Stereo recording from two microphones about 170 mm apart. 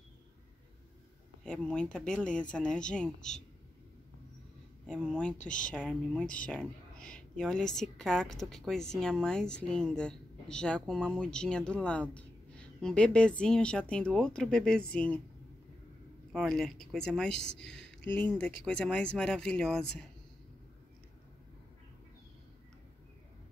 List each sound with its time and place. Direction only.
1.4 s a woman's voice: 5° left (ahead or behind)
4.8 s a woman's voice: 5° left (ahead or behind)
5.4 s speech: 50° left (ahead or behind)
5.7 s a woman's voice: 5° left (ahead or behind)
16.3 s a woman's voice: centre (ahead or behind)
17.6 s a sound: 5° left (ahead or behind)
18.1 s a woman's voice: 10° left (ahead or behind)